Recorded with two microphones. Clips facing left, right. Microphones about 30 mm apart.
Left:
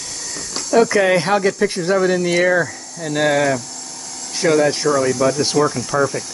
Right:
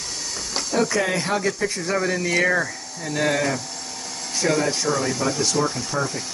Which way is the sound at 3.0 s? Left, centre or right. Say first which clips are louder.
Left 6 dB; left.